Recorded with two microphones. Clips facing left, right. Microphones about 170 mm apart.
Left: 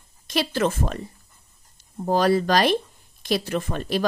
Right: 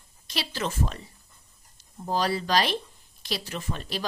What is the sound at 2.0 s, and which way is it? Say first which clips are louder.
A woman's voice: left 7 dB; 55° left (ahead or behind).